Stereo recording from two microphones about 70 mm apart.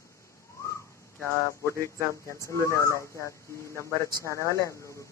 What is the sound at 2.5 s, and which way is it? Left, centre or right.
Speech, left.